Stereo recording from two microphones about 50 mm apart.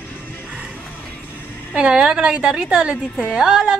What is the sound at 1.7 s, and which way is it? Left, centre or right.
Music, right.